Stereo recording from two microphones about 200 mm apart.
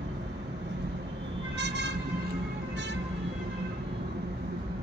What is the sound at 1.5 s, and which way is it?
Vehicle, 60° right (ahead or behind).